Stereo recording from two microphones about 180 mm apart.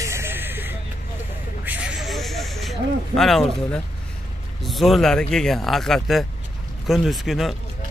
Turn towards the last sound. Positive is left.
turn(degrees=0)  # may be behind; listen again after turning